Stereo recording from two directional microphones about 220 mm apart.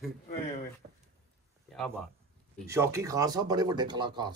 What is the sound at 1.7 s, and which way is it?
Speech, centre (ahead or behind).